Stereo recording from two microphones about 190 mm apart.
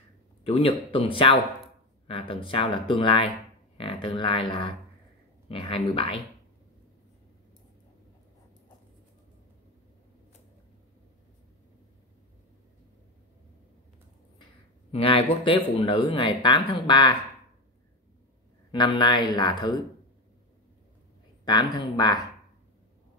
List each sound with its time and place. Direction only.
0.4 s speech: 30° left (ahead or behind)
14.9 s speech: 30° left (ahead or behind)
18.7 s speech: 25° left (ahead or behind)
21.5 s speech: 20° left (ahead or behind)